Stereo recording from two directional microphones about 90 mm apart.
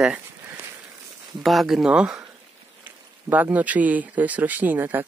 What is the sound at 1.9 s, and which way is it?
Speech, 15° right (ahead or behind).